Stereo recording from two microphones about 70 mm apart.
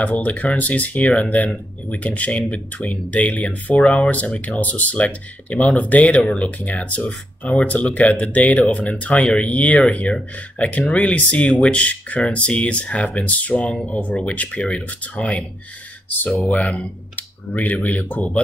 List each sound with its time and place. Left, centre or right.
0.0 s speech: left
16.5 s speech: centre